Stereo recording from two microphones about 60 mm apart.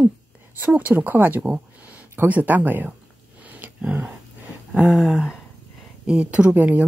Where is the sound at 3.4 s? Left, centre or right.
Right.